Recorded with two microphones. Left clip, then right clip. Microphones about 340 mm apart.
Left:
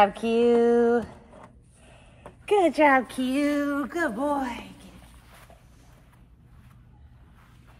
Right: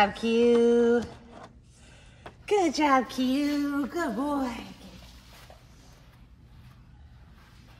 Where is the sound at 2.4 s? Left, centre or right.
Centre.